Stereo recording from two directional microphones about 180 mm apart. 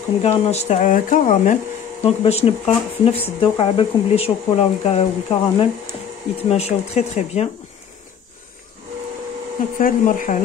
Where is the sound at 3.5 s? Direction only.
30° left (ahead or behind).